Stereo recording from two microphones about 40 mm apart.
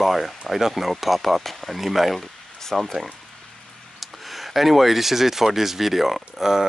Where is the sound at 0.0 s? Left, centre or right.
Centre.